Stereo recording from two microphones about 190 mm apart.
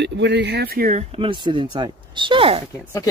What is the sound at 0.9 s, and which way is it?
Speech, 30° right (ahead or behind).